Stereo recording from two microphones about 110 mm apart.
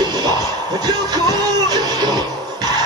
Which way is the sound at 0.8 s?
35° right (ahead or behind).